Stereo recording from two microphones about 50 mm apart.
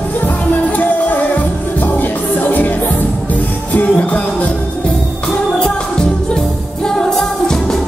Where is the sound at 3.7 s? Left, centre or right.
Left.